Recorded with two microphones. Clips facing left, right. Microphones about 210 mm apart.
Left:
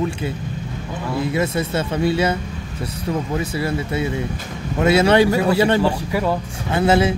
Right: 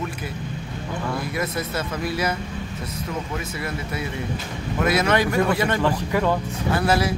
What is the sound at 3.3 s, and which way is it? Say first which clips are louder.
A man's voice: left 7 dB; 30° left (ahead or behind).